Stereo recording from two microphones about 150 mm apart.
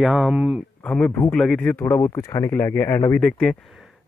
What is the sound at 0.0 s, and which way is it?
Speech, centre (ahead or behind).